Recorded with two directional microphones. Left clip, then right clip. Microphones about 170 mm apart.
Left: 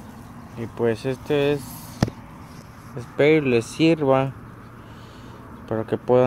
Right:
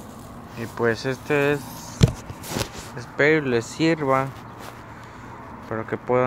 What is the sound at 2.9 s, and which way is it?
Speech, 25° left (ahead or behind).